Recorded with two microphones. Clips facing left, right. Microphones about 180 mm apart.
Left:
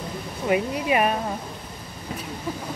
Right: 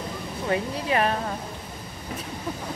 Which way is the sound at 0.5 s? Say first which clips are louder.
Left 3 dB; 15° left (ahead or behind).